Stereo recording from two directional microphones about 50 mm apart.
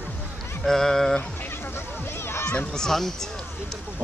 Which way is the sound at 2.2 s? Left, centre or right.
Left.